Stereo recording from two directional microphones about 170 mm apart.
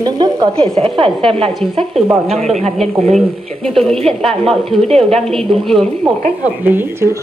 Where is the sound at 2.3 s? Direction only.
40° right (ahead or behind).